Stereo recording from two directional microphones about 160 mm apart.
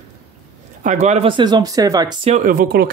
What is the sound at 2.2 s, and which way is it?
Speech, 50° right (ahead or behind).